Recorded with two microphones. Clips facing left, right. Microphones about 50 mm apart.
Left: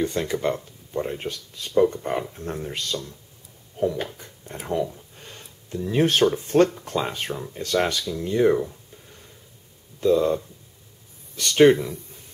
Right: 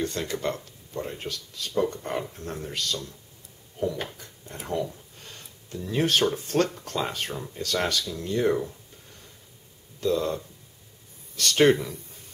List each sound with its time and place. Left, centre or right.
0.0 s speech: centre
3.8 s a sound: left
4.5 s a sound: centre
6.3 s speech: left
9.9 s speech: centre
11.3 s speech: centre